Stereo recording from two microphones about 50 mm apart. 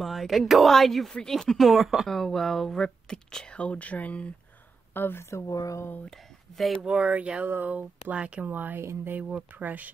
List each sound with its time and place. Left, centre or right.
0.0 s speech: centre
1.7 s speech: centre
2.0 s speech: centre; by 4.3 s left
4.9 s speech: left
5.2 s speech: left
6.0 s speech: centre
6.8 s speech: centre
8.5 s speech: right